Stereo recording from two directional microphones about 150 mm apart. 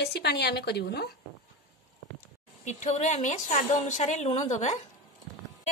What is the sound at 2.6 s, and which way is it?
A woman's voice, 55° left (ahead or behind).